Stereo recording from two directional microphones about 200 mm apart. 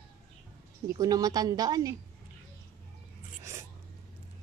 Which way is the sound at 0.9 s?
20° right (ahead or behind).